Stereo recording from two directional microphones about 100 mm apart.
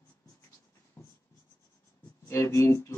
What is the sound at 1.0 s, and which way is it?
Writing, 25° left (ahead or behind).